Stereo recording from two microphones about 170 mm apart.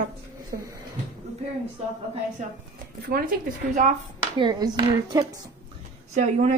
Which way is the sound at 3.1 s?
65° right (ahead or behind).